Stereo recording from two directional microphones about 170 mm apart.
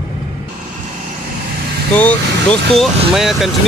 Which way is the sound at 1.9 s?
10° left (ahead or behind).